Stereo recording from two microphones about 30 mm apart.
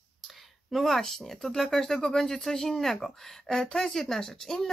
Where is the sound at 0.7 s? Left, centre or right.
Centre.